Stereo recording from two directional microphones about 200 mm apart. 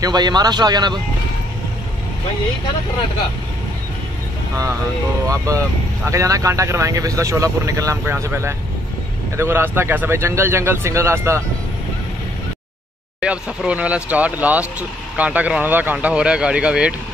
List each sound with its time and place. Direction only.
0.0 s speech: 20° right (ahead or behind)
5.2 s speech: 15° right (ahead or behind)
13.2 s speech: 5° right (ahead or behind)